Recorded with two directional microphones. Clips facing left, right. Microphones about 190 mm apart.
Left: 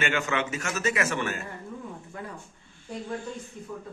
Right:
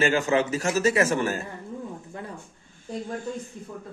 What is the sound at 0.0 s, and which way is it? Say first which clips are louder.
A man's voice: right 6 dB; 35° right (ahead or behind).